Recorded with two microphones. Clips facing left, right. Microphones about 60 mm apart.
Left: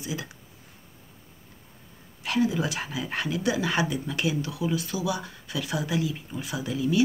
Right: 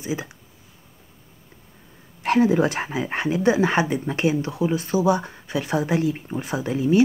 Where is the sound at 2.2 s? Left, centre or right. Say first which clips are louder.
Right 7 dB; right.